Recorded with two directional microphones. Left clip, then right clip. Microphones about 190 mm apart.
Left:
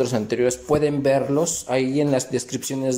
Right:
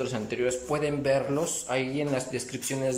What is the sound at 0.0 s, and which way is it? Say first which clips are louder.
Speech: left 8 dB; 25° left (ahead or behind).